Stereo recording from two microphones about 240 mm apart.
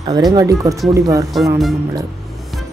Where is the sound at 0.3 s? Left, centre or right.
Centre.